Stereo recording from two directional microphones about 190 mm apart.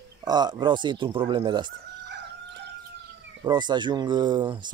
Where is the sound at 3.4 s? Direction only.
25° right (ahead or behind).